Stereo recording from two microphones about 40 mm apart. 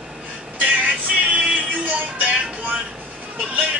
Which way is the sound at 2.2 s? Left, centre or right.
Right.